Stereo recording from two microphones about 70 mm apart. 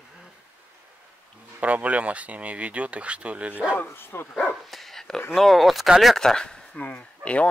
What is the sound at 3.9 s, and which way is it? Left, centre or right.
Speech, left.